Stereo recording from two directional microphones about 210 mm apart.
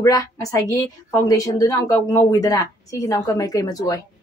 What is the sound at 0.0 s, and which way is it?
A woman's voice, 15° left (ahead or behind).